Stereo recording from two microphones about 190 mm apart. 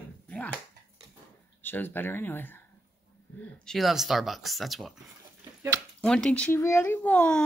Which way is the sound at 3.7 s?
Centre (ahead or behind).